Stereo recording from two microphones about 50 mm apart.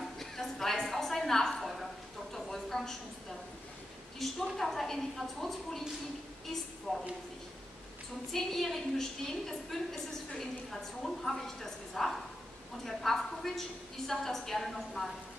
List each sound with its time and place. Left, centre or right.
0.2 s a sound: centre
4.2 s a woman's voice: centre
6.9 s speech: centre
8.3 s a woman's voice: centre